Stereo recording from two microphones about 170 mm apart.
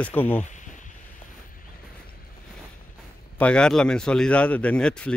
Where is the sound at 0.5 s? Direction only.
45° left (ahead or behind).